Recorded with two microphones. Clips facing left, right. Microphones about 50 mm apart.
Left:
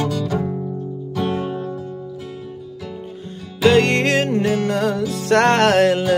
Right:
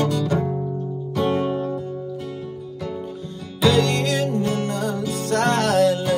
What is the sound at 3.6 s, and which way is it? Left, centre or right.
Music, left.